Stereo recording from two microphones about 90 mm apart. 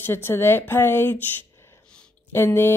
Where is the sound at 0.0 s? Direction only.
25° left (ahead or behind).